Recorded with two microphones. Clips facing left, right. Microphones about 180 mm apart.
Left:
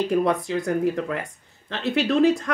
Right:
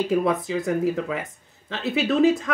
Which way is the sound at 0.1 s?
Centre (ahead or behind).